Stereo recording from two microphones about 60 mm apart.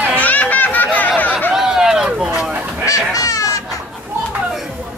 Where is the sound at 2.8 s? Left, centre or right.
Left.